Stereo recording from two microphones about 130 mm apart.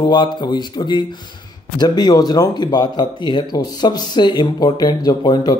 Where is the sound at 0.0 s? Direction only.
35° left (ahead or behind).